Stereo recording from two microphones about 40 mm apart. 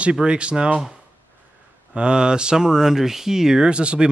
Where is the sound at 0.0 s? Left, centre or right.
Right.